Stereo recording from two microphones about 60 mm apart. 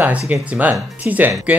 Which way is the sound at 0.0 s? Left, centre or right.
Right.